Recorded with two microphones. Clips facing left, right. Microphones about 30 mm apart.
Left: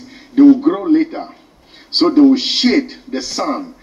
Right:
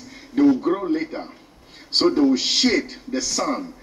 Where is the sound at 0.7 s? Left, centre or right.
Left.